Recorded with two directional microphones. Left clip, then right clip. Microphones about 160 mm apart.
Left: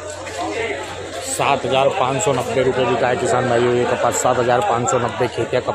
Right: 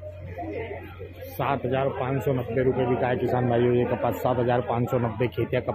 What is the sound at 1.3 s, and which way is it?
A man's voice, 15° left (ahead or behind).